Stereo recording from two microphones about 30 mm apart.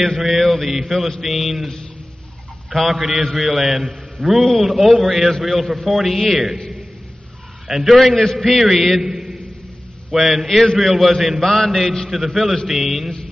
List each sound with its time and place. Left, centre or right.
0.2 s mantra: centre
1.2 s a man's voice: centre
2.7 s a man's voice: centre
7.6 s a man's voice: centre
9.0 s a sound: centre
10.1 s a man's voice: centre